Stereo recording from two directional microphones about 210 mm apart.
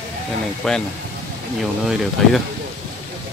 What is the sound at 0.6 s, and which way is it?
Speech, centre (ahead or behind).